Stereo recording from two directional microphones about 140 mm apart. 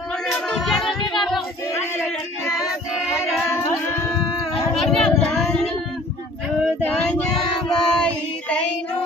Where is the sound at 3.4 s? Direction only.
20° left (ahead or behind).